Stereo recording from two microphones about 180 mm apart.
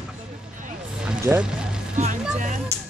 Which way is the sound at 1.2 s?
5° right (ahead or behind).